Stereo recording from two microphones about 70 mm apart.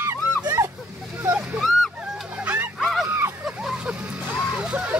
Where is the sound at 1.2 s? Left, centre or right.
Right.